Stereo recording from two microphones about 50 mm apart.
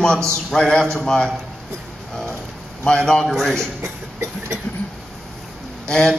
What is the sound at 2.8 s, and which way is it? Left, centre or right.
Speech, centre.